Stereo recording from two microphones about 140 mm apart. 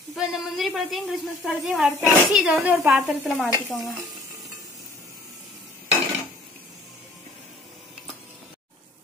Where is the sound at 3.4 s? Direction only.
20° right (ahead or behind).